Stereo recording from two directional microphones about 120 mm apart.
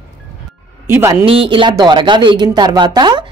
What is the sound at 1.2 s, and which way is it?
A woman's voice, 50° right (ahead or behind).